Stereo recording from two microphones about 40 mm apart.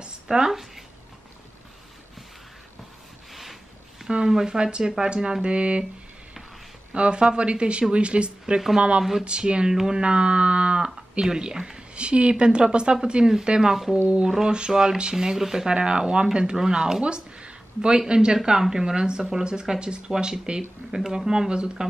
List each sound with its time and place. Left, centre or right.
0.0 s a sound: centre
0.5 s speech: centre
4.3 s speech: centre
4.6 s speech: right
6.9 s speech: right
8.5 s speech: centre
9.2 s speech: right
10.0 s speech: right
11.9 s speech: right